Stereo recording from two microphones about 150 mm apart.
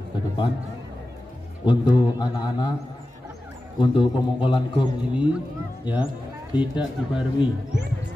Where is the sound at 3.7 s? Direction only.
35° left (ahead or behind).